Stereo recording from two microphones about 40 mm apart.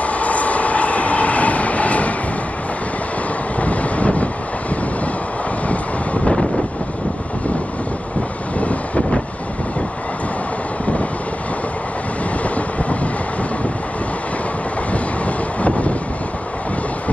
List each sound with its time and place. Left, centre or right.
0.0 s train: left
3.5 s wind noise: left
8.5 s vehicle: left
14.9 s vehicle: left